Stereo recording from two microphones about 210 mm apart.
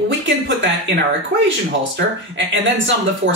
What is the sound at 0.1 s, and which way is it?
Speech, 55° right (ahead or behind).